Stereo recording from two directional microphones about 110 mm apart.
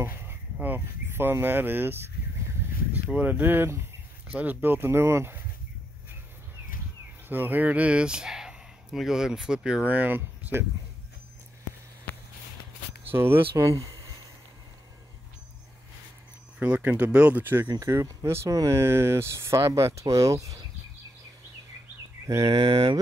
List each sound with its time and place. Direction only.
0.0 s speech: 20° right (ahead or behind)
7.2 s speech: 15° right (ahead or behind)
13.1 s speech: 20° right (ahead or behind)
16.5 s speech: 10° right (ahead or behind); by 20.6 s 30° right (ahead or behind)
22.2 s speech: 30° right (ahead or behind)